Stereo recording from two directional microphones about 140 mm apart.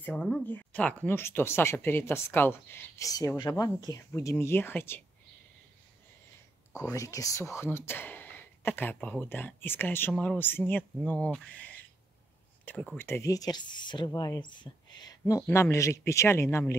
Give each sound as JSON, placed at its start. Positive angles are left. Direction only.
{"t": 0.0, "sound": "speech", "side_deg": 10}
{"t": 6.8, "sound": "speech", "side_deg": 25}